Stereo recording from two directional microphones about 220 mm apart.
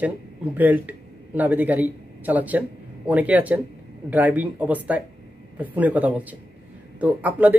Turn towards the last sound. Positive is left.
turn(degrees=-5)  # may be behind; listen again after turning